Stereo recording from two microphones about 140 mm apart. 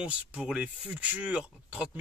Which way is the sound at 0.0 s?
5° right (ahead or behind).